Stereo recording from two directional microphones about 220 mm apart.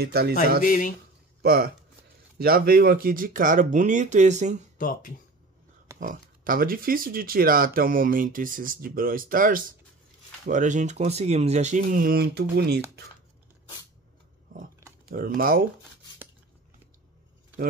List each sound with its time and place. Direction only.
0.0 s speech: 45° right (ahead or behind)
0.6 s speech: 40° left (ahead or behind)
1.4 s speech: 45° right (ahead or behind)
4.7 s speech: 35° left (ahead or behind)
5.9 s speech: 40° right (ahead or behind)
14.5 s roaring cats: 40° right (ahead or behind)
15.0 s speech: 40° right (ahead or behind)